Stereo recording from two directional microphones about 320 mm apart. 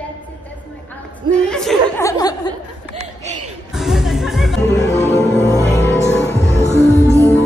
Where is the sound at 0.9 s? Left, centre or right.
Centre.